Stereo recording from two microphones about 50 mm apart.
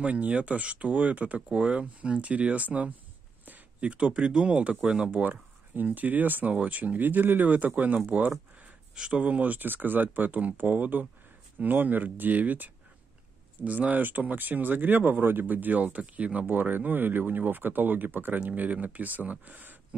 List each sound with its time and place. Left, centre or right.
0.0 s speech: right
1.5 s speech: centre
3.4 s a sound: right
3.9 s speech: right
5.2 s speech: right